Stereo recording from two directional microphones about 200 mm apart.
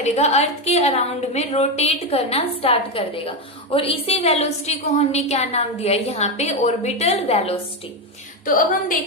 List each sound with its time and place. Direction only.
0.0 s a woman's voice: 35° left (ahead or behind)
8.5 s a woman's voice: 45° left (ahead or behind)